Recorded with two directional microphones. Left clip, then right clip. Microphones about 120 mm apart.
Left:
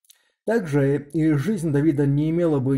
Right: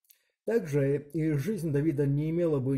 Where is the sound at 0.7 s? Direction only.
15° right (ahead or behind).